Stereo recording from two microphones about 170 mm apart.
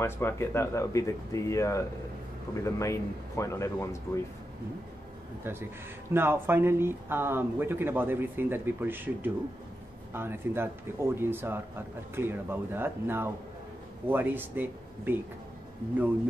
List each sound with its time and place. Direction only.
0.0 s speech: 15° left (ahead or behind)
6.1 s speech: 15° right (ahead or behind)